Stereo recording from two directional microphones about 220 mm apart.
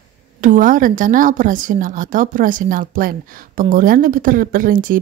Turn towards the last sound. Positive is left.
turn(degrees=-40)  # may be behind; listen again after turning